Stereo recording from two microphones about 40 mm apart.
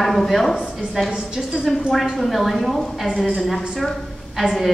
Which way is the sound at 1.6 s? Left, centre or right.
Centre.